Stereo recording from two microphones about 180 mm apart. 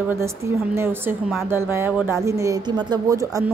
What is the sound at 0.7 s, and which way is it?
Speech, 10° right (ahead or behind).